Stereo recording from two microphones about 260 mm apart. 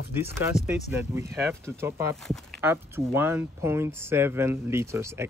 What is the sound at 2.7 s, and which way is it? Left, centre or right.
Speech, centre.